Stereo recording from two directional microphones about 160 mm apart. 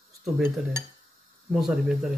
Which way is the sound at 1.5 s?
5° right (ahead or behind).